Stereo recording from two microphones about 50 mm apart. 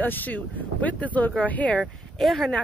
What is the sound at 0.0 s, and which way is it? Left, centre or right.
Speech, left.